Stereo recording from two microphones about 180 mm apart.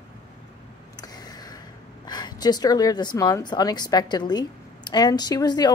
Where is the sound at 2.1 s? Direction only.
25° left (ahead or behind).